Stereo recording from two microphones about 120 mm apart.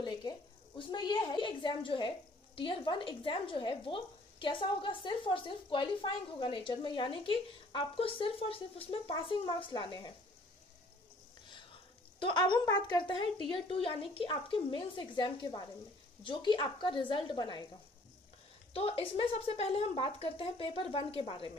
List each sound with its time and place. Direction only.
0.0 s a woman's voice: 35° left (ahead or behind)
12.2 s a woman's voice: 40° left (ahead or behind)
18.7 s a woman's voice: 50° left (ahead or behind)